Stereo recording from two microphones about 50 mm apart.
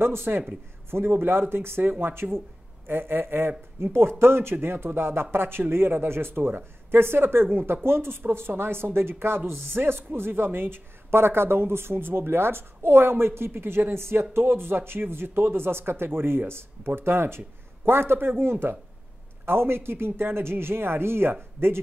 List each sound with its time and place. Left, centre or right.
0.0 s speech: right